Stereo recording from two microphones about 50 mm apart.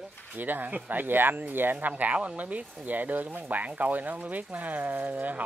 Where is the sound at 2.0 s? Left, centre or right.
Right.